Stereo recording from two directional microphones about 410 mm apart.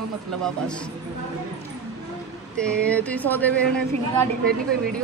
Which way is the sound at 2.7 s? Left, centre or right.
Centre.